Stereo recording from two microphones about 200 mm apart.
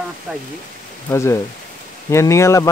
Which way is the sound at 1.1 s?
15° left (ahead or behind).